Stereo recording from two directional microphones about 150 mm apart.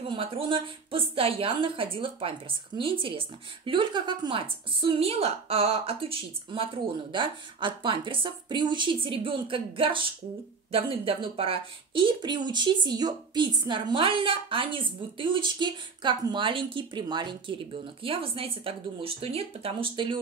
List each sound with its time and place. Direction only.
0.1 s speech: 35° right (ahead or behind)